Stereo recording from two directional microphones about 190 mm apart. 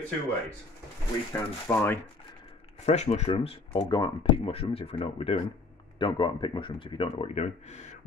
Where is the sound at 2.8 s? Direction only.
35° left (ahead or behind).